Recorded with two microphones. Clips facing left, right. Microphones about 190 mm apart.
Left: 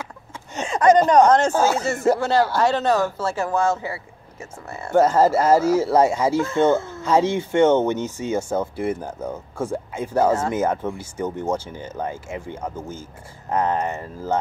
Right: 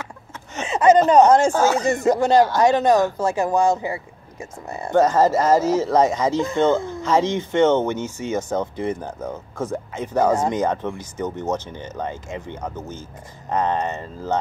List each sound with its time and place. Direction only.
0.7 s speech: 5° right (ahead or behind)
1.5 s speech: 10° left (ahead or behind)
1.8 s speech: 15° right (ahead or behind)
4.9 s speech: 10° left (ahead or behind)
6.3 s speech: 15° right (ahead or behind)
7.0 s speech: 15° left (ahead or behind)